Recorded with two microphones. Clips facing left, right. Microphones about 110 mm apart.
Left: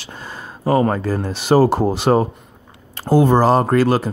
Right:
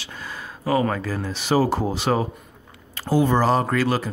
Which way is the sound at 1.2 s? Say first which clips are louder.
Left 6 dB; 45° left (ahead or behind).